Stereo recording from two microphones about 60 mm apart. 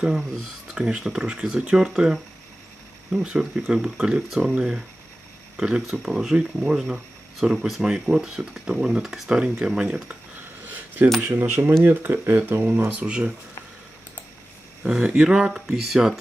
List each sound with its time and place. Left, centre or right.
0.0 s speech: centre
3.3 s speech: centre
11.2 s speech: right
13.0 s speech: centre
14.9 s speech: centre